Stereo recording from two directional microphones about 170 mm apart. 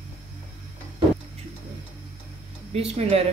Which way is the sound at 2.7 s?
35° right (ahead or behind).